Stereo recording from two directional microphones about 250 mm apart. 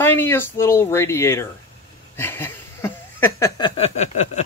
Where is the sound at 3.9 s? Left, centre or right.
Left.